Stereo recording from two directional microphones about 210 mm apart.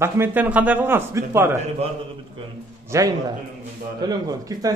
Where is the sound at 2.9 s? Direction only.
15° right (ahead or behind).